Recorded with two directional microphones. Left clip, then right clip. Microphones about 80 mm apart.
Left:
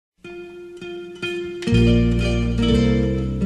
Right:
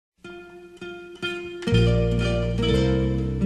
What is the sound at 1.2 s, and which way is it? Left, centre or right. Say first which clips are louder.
Music: left 3 dB; left.